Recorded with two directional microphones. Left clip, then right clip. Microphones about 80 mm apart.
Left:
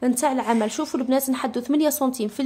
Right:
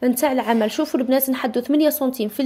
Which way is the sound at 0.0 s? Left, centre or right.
Right.